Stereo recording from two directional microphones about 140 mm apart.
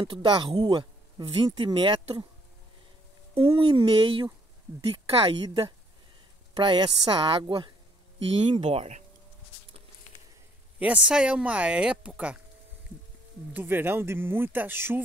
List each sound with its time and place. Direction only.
0.0 s speech: 35° right (ahead or behind)
3.3 s speech: 40° right (ahead or behind)
10.8 s speech: 10° right (ahead or behind)
13.5 s speech: 15° right (ahead or behind)